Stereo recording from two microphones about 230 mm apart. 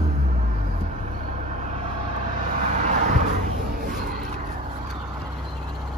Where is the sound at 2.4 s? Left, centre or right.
Right.